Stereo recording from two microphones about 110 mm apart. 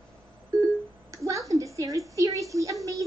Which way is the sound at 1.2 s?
30° right (ahead or behind).